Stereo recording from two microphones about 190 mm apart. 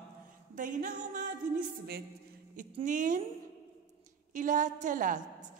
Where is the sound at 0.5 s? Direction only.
45° right (ahead or behind).